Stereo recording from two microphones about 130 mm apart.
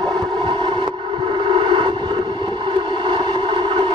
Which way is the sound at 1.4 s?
40° right (ahead or behind).